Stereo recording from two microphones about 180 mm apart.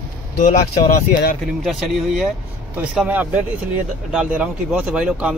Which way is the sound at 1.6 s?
Centre (ahead or behind).